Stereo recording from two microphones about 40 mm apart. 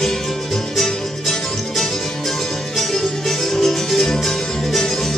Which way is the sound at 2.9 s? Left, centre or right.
Centre.